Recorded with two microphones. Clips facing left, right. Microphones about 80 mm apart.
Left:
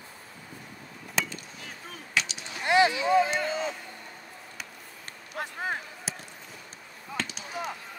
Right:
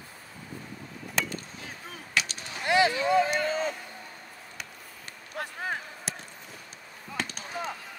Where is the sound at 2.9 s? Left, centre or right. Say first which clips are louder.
Left 1 dB; right.